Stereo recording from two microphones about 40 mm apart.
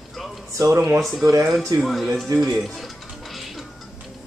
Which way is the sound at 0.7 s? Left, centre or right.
Right.